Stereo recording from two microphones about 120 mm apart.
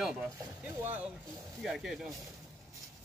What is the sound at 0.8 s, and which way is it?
Speech, 15° right (ahead or behind).